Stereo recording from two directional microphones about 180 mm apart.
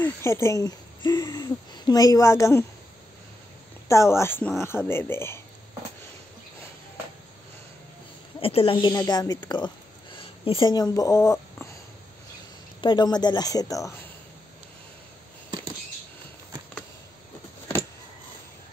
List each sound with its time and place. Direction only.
0.0 s speech: 15° left (ahead or behind)
3.9 s speech: 15° left (ahead or behind)
8.4 s speech: 30° left (ahead or behind); by 11.4 s 15° left (ahead or behind)
12.8 s speech: 25° left (ahead or behind)